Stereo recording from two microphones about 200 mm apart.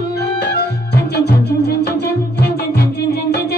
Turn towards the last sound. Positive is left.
turn(degrees=55)  # may be behind; listen again after turning